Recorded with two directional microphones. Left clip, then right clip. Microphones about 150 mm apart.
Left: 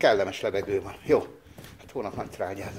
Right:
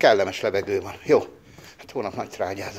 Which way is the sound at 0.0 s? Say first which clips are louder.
Right 4 dB; 35° right (ahead or behind).